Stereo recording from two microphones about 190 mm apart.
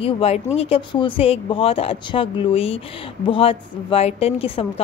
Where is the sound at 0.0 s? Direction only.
30° left (ahead or behind).